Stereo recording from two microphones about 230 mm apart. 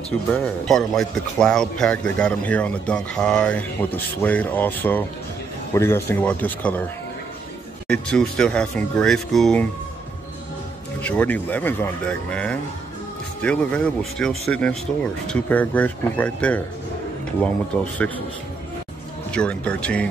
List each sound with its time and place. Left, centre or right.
0.3 s a man's voice: centre
7.9 s a man's voice: centre
11.0 s a man's voice: centre
17.7 s speech: centre
19.3 s a man's voice: centre